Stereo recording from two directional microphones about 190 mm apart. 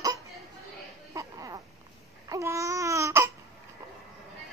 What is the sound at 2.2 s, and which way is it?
Babbling, 15° right (ahead or behind).